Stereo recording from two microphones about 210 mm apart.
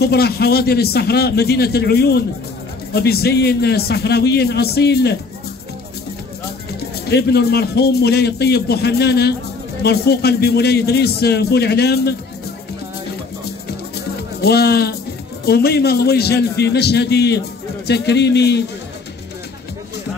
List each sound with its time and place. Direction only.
0.0 s a man's voice: 50° left (ahead or behind)
7.1 s a man's voice: 50° left (ahead or behind)
14.4 s a man's voice: 50° left (ahead or behind)